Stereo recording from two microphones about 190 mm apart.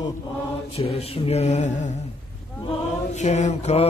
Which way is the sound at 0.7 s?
30° left (ahead or behind).